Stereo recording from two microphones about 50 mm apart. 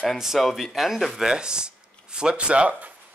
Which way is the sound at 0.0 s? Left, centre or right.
Centre.